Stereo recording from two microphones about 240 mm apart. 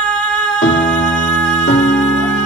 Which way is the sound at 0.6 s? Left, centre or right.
Left.